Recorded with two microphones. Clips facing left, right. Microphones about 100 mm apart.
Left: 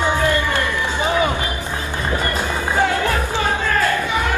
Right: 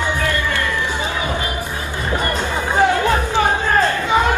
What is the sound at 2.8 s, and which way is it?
Music, 20° right (ahead or behind).